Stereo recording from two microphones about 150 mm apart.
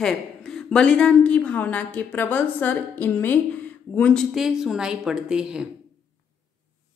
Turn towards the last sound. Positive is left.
turn(degrees=-5)  # may be behind; listen again after turning